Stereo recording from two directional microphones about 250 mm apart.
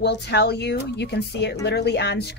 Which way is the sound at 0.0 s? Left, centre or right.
Left.